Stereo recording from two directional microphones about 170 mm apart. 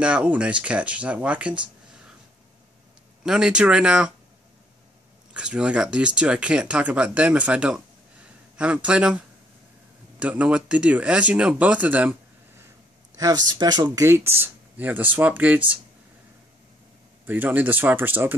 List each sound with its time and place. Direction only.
0.0 s speech: 5° right (ahead or behind)
3.3 s speech: 5° right (ahead or behind)
5.3 s speech: 5° right (ahead or behind)
13.1 s speech: 20° right (ahead or behind)
17.3 s speech: 10° right (ahead or behind)